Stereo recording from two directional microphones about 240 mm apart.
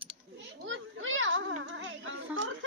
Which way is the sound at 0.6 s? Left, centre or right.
Right.